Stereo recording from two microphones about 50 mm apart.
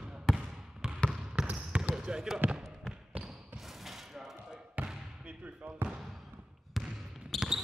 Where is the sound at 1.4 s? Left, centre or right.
Centre.